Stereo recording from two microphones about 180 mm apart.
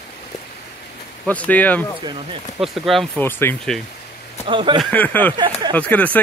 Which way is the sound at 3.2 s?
10° left (ahead or behind).